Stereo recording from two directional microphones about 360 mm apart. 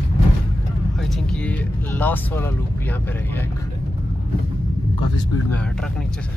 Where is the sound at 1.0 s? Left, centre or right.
Centre.